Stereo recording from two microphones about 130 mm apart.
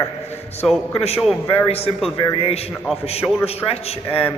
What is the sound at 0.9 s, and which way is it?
A man's voice, 50° left (ahead or behind).